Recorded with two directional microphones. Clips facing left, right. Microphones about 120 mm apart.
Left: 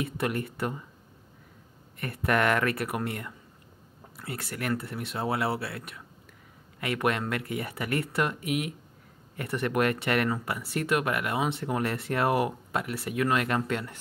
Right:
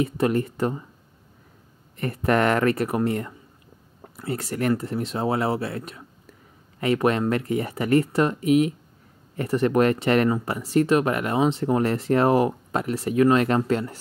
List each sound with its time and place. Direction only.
0.0 s speech: 35° right (ahead or behind)
2.0 s speech: 35° right (ahead or behind)